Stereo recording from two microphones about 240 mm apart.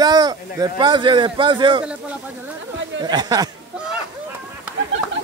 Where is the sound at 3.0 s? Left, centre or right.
Centre.